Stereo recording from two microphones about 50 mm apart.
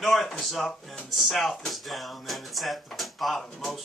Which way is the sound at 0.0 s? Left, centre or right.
Centre.